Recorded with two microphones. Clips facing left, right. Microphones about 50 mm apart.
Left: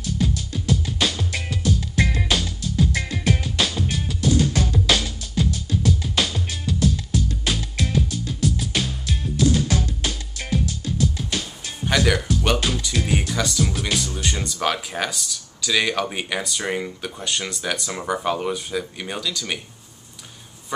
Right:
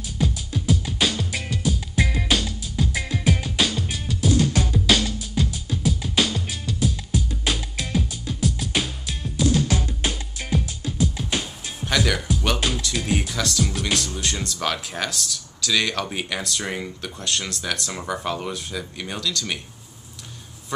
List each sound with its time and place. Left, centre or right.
0.0 s music: centre
10.0 s music: centre
11.8 s music: centre
12.5 s speech: centre